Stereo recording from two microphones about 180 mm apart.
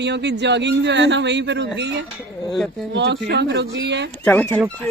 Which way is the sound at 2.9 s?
75° right (ahead or behind).